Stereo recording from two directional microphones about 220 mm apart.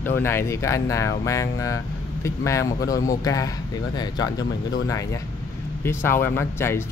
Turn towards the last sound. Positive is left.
turn(degrees=10)  # may be behind; listen again after turning